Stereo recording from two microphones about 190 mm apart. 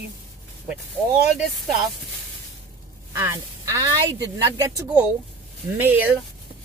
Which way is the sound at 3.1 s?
15° right (ahead or behind).